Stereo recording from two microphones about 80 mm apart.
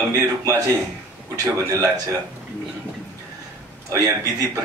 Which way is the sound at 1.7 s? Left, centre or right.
Right.